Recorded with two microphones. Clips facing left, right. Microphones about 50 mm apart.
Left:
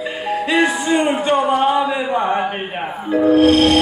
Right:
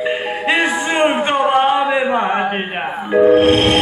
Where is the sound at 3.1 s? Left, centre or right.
Right.